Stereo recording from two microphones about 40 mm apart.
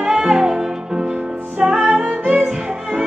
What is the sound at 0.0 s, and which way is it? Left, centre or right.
Music, centre.